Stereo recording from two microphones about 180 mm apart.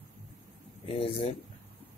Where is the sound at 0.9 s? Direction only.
30° left (ahead or behind).